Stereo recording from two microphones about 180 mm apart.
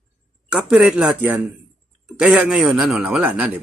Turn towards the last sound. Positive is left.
turn(degrees=-5)  # may be behind; listen again after turning